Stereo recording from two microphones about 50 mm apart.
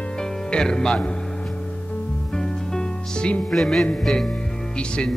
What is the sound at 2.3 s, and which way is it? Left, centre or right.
Music, centre.